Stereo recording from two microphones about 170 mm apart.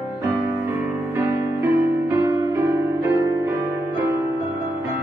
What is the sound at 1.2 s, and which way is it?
Music, 15° right (ahead or behind).